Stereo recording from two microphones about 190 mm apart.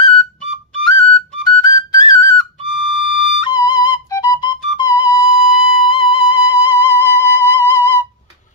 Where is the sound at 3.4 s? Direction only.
20° left (ahead or behind).